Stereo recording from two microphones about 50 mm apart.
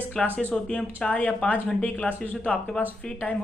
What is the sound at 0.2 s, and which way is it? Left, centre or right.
Speech, left.